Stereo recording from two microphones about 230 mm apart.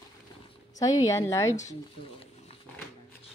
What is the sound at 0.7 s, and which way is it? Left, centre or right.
Speech, centre.